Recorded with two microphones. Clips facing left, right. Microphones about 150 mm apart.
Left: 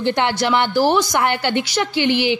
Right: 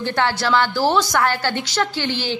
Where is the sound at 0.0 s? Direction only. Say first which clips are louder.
Left 2 dB; 20° left (ahead or behind).